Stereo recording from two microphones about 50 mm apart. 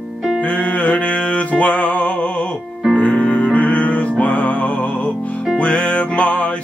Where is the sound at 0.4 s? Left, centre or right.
Left.